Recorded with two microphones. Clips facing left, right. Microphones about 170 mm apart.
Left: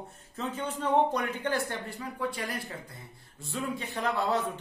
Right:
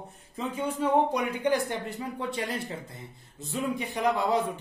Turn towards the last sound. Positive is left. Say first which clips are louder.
# right 3 dB
turn(degrees=-15)  # may be behind; listen again after turning